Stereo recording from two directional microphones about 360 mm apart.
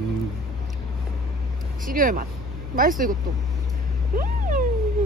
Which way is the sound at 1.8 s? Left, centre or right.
Right.